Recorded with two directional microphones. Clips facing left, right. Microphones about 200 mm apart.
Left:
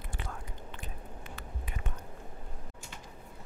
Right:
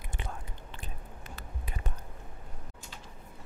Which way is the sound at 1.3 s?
35° right (ahead or behind).